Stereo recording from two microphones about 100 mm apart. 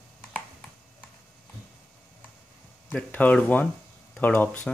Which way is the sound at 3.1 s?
15° left (ahead or behind).